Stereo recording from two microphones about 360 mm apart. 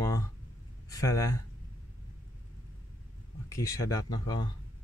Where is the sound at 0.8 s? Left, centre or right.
Centre.